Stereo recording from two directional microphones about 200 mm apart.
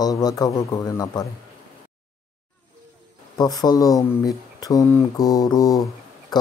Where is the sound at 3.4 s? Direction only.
20° left (ahead or behind).